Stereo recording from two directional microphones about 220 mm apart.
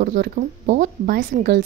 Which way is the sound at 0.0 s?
35° right (ahead or behind).